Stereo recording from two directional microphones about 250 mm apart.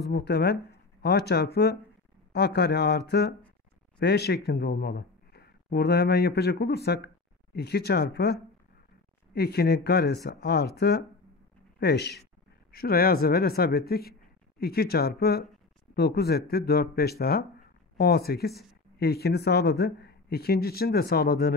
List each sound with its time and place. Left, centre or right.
0.0 s speech: left